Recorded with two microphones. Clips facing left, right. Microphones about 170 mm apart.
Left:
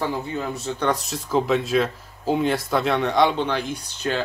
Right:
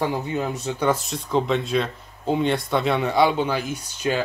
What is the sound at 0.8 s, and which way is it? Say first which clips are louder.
Speech: right 1 dB; centre (ahead or behind).